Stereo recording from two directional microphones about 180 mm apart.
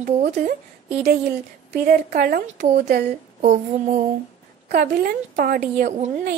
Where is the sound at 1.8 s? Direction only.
55° right (ahead or behind).